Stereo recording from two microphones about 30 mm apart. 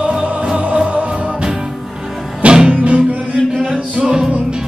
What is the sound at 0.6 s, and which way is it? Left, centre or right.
Music, right.